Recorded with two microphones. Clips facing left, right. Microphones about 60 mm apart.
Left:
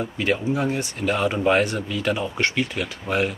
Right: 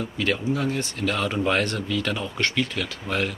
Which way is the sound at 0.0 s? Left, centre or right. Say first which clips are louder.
Left 2 dB; left.